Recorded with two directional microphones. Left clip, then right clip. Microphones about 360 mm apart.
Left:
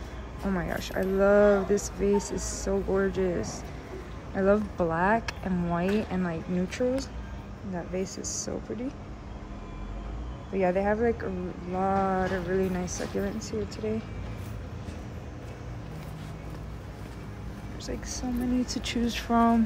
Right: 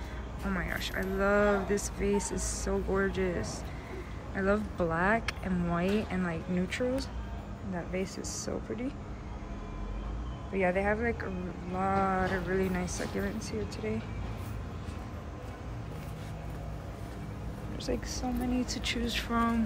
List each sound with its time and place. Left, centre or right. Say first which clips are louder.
0.5 s speech: left 3 dB; centre
10.5 s speech: left 3 dB; centre
18.7 s speech: left 2 dB; centre